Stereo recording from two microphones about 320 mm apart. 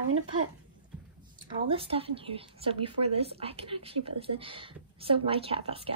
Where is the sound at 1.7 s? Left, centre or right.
Centre.